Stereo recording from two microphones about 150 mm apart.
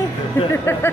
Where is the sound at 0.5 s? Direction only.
15° left (ahead or behind).